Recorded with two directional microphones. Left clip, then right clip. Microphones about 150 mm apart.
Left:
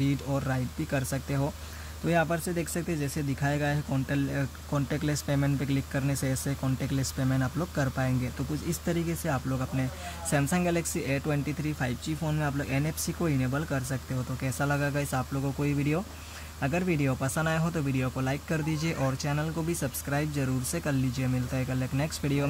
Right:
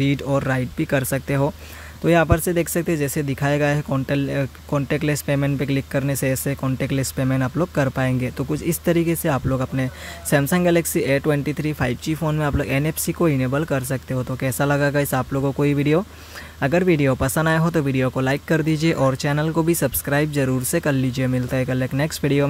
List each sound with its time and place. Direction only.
0.0 s speech: 50° right (ahead or behind)